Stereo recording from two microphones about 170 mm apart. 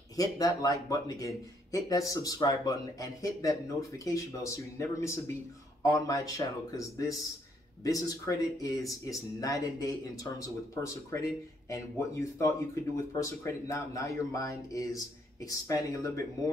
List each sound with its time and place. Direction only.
0.1 s speech: 20° left (ahead or behind)